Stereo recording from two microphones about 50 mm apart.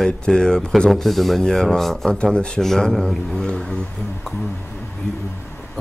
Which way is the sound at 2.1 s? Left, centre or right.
Centre.